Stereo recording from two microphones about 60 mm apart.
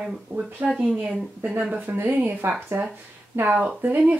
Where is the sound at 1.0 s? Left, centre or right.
Centre.